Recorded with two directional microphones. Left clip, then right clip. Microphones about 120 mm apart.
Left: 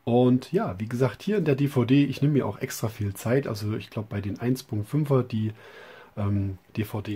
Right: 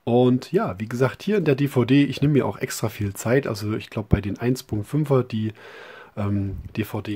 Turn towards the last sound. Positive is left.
turn(degrees=-25)  # may be behind; listen again after turning